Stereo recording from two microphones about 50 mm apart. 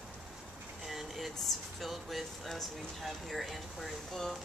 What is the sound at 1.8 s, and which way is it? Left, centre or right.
A woman's voice, centre.